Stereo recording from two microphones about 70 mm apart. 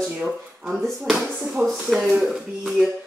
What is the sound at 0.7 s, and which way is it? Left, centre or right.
A woman's voice, centre.